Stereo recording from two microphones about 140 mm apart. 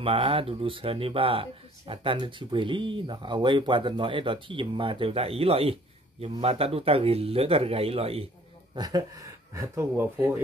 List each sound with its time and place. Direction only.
0.0 s speech: 40° right (ahead or behind)
8.7 s speech: 25° right (ahead or behind)